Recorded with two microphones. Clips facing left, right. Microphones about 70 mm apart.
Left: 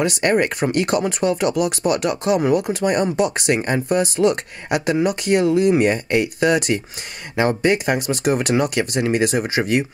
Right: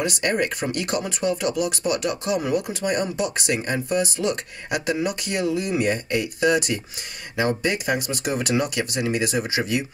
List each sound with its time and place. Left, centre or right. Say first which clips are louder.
0.0 s speech: left 5 dB; left